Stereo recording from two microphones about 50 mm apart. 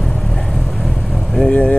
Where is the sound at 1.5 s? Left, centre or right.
Left.